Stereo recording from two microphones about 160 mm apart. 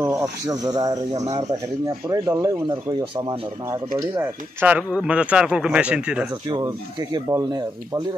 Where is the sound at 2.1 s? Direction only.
20° right (ahead or behind).